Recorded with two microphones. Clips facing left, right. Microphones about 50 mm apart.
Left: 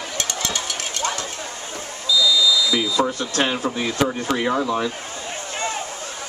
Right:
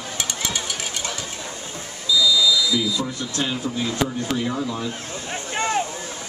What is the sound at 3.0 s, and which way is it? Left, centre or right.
Speech, left.